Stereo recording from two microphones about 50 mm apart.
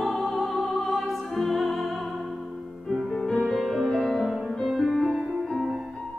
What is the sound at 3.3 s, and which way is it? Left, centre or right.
Music, left.